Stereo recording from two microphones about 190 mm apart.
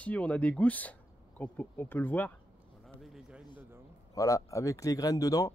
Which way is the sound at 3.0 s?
5° right (ahead or behind).